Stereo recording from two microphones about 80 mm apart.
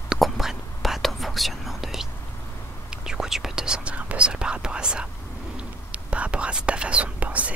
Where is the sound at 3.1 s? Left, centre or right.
Centre.